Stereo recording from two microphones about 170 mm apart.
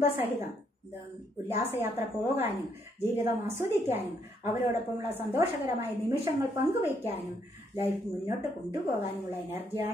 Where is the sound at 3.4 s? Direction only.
15° right (ahead or behind).